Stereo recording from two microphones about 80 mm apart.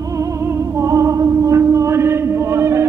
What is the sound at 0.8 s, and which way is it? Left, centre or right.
Music, right.